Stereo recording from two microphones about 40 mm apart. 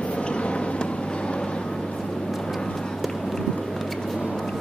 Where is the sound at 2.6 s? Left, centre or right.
Centre.